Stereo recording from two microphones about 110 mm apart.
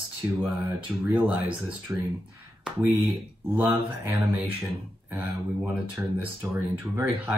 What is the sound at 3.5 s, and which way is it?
Speech, 20° right (ahead or behind).